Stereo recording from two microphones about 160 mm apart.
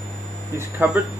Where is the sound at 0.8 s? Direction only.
15° right (ahead or behind).